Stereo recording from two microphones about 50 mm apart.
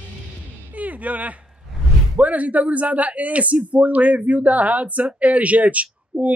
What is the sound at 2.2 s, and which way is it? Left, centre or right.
Speech, right.